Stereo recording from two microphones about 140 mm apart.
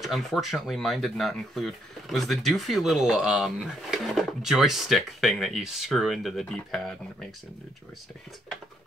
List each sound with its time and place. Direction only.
0.0 s speech: centre (ahead or behind)